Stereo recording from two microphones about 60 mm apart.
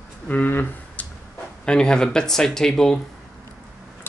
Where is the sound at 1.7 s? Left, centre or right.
Centre.